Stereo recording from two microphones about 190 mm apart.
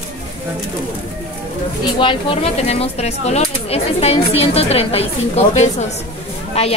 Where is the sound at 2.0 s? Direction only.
30° left (ahead or behind).